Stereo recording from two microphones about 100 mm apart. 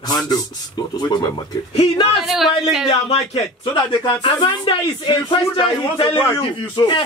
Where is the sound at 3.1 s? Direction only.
90° left.